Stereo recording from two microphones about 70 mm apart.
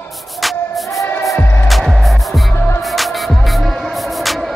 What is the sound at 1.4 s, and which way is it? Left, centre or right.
Music, left.